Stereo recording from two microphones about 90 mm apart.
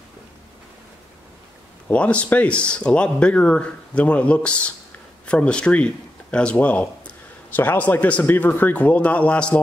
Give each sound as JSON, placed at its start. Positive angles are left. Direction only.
{"t": 1.9, "sound": "speech", "side_deg": 15}